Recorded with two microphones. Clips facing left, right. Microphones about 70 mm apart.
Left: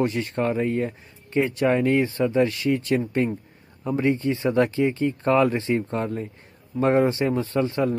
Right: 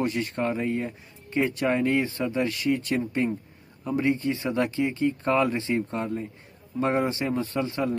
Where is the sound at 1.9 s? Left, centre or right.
Left.